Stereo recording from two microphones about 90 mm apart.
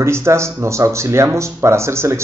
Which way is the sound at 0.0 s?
30° right (ahead or behind).